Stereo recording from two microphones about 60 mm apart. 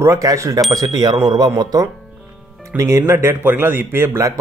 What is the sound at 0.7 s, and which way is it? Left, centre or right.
A man's voice, right.